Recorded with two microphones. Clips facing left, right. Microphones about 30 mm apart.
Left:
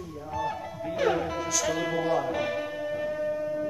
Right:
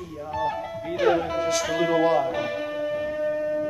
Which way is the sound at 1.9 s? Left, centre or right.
Right.